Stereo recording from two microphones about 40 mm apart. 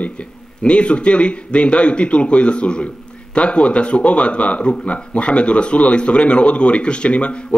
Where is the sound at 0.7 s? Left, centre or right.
Left.